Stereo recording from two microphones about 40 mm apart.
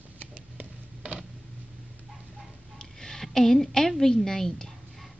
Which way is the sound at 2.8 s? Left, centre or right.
Centre.